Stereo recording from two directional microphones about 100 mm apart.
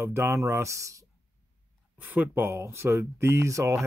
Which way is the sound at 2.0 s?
15° right (ahead or behind).